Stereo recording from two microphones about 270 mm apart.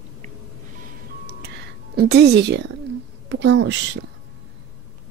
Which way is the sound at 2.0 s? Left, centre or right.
Right.